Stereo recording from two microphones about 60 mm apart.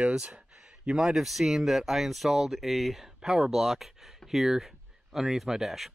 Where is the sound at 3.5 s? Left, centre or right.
Centre.